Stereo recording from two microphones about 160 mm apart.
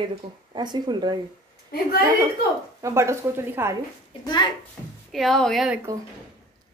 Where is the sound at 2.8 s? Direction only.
20° right (ahead or behind).